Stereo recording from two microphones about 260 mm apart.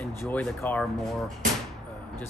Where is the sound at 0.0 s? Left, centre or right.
Centre.